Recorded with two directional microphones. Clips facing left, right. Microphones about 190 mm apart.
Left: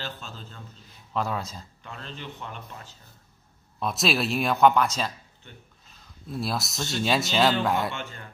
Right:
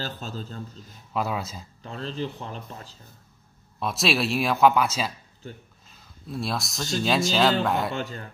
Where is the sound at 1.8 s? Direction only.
35° right (ahead or behind).